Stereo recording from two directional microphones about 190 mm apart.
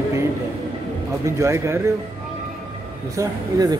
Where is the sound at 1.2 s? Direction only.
15° right (ahead or behind).